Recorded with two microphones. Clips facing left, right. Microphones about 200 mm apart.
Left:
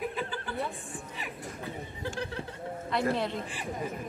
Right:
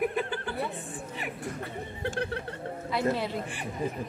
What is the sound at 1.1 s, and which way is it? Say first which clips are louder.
Speech: right 7 dB; 60° right (ahead or behind).